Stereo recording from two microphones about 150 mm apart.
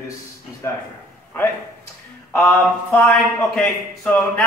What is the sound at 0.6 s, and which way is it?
Speech, 20° left (ahead or behind).